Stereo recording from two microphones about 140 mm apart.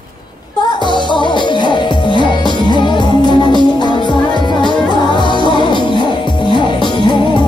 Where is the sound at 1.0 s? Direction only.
35° left (ahead or behind).